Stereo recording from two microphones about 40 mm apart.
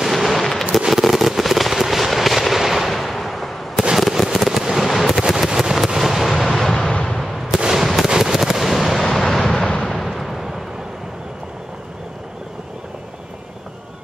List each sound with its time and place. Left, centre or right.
0.0 s fireworks: centre
5.5 s fireworks: centre
6.3 s artillery fire: centre
6.7 s a sound: centre
7.5 s gunshot: centre
8.1 s machine gun: centre
9.1 s artillery fire: centre
9.6 s artillery fire: left
9.8 s a sound: centre